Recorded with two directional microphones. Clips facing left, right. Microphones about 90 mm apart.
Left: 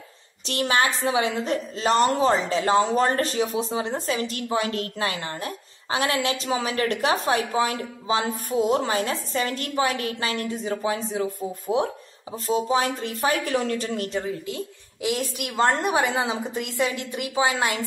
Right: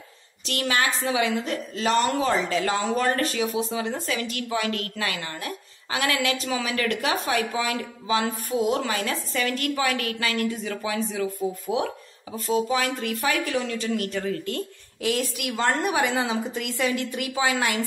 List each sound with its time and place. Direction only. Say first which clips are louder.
0.5 s a woman's voice: left 2 dB; 30° left (ahead or behind)
12.4 s a woman's voice: left 1 dB; 30° left (ahead or behind)